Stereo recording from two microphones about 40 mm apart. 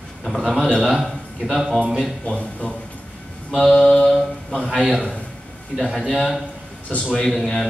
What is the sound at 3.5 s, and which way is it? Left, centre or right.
A man's voice, centre.